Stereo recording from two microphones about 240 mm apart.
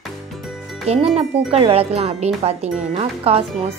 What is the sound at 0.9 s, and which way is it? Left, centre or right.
Speech, right.